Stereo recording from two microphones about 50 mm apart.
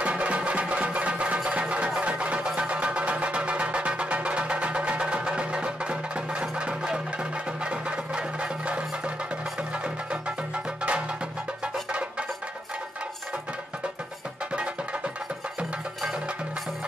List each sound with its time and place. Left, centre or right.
0.0 s music: right
14.5 s music: right